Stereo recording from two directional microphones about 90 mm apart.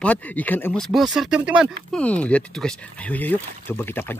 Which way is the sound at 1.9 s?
15° left (ahead or behind).